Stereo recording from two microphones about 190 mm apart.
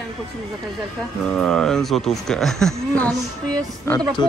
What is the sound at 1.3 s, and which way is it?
A man's voice, 5° left (ahead or behind).